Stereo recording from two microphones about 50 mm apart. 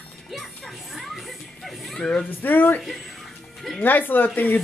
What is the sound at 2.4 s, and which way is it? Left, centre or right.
Speech, left.